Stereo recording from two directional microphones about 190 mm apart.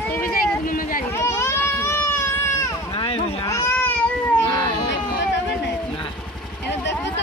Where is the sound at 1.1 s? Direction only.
15° left (ahead or behind).